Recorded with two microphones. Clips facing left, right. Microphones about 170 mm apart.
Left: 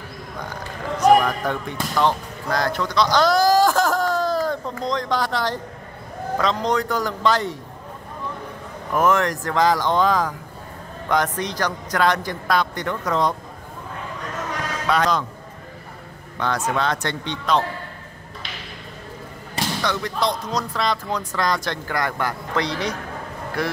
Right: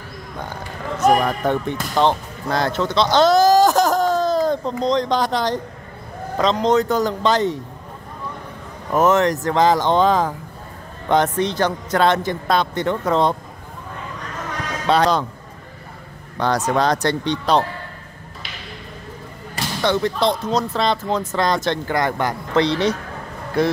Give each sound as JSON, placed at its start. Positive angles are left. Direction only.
{"t": 1.2, "sound": "speech", "side_deg": -25}
{"t": 8.9, "sound": "speech", "side_deg": -20}
{"t": 14.9, "sound": "speech", "side_deg": -30}
{"t": 16.3, "sound": "speech", "side_deg": -35}
{"t": 19.8, "sound": "speech", "side_deg": -30}